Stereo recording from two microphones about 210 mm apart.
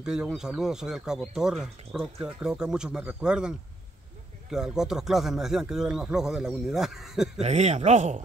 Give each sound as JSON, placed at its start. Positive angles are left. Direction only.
{"t": 0.0, "sound": "speech", "side_deg": -5}
{"t": 7.3, "sound": "speech", "side_deg": -30}